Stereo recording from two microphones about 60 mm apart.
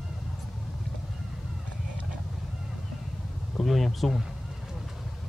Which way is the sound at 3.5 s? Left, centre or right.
Centre.